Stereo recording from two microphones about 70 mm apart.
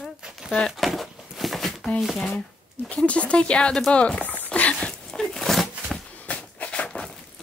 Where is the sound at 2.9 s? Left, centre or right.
Centre.